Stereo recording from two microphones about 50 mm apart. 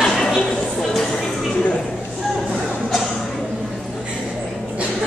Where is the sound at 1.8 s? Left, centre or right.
Centre.